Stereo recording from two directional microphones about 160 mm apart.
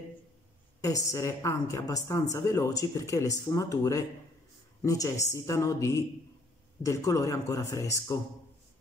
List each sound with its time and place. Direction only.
0.7 s a woman's voice: 20° left (ahead or behind)